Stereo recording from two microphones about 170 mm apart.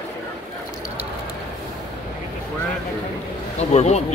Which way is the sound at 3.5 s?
40° left (ahead or behind).